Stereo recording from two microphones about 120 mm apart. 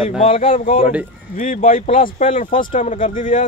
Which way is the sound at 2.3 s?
90° left.